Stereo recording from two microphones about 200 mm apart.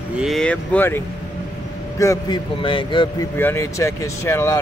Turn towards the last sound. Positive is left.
turn(degrees=15)  # may be behind; listen again after turning